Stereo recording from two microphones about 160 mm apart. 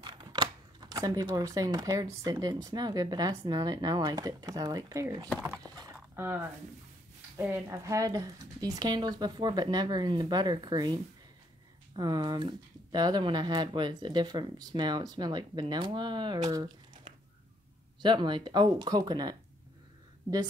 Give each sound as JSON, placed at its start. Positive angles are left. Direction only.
{"t": 0.0, "sound": "speech", "side_deg": -25}
{"t": 5.6, "sound": "a sound", "side_deg": -20}
{"t": 7.3, "sound": "speech", "side_deg": -15}